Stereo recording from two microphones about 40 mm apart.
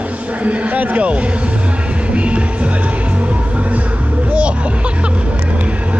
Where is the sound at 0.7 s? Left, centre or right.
Right.